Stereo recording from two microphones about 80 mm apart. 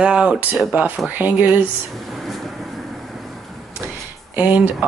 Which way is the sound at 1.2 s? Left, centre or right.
Right.